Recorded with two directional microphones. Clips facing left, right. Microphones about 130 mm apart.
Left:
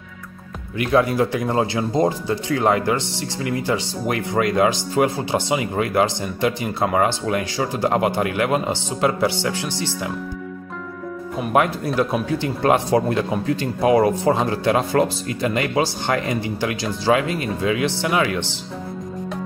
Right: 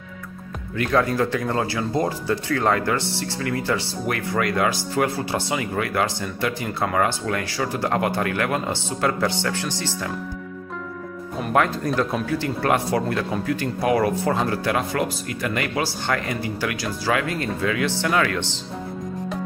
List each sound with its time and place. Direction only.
0.7 s speech: 15° left (ahead or behind)
11.3 s speech: 15° left (ahead or behind)